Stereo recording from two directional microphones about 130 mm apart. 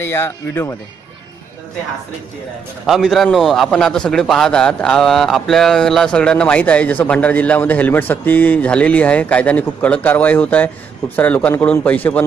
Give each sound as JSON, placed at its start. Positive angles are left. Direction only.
{"t": 0.0, "sound": "speech", "side_deg": 20}
{"t": 2.9, "sound": "a man's voice", "side_deg": 0}